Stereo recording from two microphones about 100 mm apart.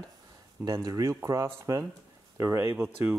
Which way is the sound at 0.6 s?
40° right (ahead or behind).